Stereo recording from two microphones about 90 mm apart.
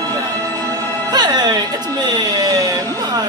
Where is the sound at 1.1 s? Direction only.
50° right (ahead or behind).